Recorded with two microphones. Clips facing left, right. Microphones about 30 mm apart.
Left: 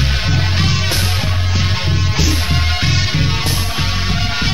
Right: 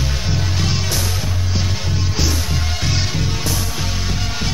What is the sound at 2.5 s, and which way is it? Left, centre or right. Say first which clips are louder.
Music: left 5 dB; left.